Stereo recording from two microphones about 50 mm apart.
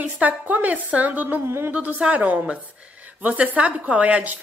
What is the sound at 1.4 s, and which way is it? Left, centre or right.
Speech, right.